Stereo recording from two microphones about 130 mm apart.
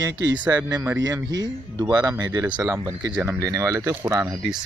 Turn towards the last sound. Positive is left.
turn(degrees=-25)  # may be behind; listen again after turning